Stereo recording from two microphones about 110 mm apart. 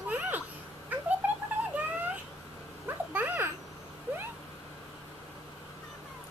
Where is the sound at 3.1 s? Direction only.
15° right (ahead or behind).